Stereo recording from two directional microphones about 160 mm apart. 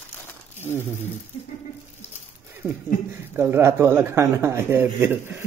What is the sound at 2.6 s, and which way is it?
Speech, 10° right (ahead or behind).